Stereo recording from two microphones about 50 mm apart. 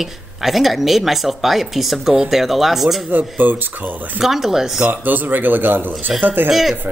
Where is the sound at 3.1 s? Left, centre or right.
Right.